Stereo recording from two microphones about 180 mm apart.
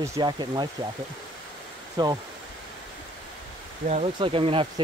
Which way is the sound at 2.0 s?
25° right (ahead or behind).